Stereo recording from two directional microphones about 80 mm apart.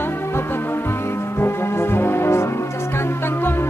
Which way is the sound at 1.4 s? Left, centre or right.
Left.